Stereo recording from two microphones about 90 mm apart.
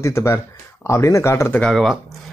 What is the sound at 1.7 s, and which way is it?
Speech, centre (ahead or behind).